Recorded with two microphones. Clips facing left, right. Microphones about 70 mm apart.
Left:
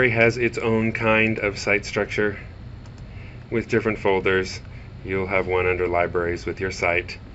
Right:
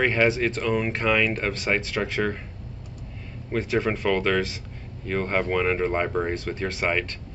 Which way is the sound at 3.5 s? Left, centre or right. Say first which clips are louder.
Left 3 dB; centre.